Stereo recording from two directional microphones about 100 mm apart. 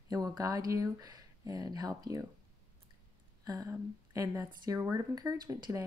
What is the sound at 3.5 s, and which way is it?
Speech, 35° right (ahead or behind).